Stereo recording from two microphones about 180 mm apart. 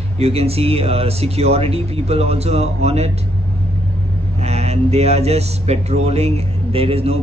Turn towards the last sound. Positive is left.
turn(degrees=-35)  # may be behind; listen again after turning